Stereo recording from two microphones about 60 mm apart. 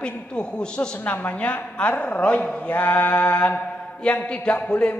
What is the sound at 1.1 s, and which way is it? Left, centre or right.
A woman's voice, left.